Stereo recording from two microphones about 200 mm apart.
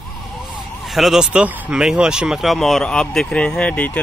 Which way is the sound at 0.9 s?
Centre (ahead or behind).